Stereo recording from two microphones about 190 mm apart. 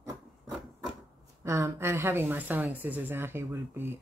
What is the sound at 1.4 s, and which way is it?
Speech, 15° right (ahead or behind).